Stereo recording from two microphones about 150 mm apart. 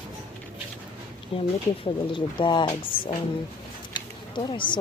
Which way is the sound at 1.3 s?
40° left (ahead or behind).